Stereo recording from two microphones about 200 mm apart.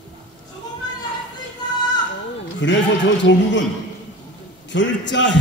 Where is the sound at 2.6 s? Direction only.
65° left (ahead or behind).